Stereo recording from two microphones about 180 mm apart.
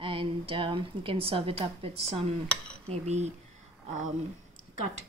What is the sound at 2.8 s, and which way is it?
Speech, 35° right (ahead or behind).